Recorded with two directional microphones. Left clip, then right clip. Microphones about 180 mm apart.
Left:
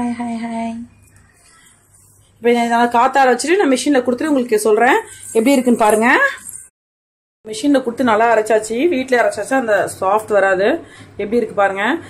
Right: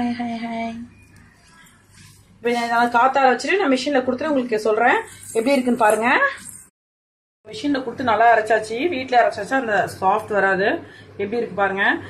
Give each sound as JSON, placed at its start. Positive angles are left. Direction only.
{"t": 0.0, "sound": "a sound", "side_deg": 20}
{"t": 2.4, "sound": "speech", "side_deg": 55}
{"t": 7.4, "sound": "speech", "side_deg": 55}
{"t": 9.6, "sound": "speech", "side_deg": 30}